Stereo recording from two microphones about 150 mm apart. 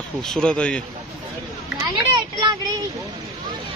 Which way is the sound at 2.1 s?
30° right (ahead or behind).